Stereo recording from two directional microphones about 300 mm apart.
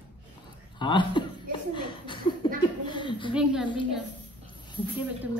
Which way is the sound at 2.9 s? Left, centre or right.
Centre.